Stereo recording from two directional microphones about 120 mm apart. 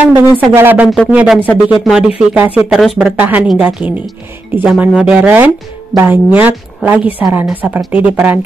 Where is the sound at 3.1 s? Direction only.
15° right (ahead or behind).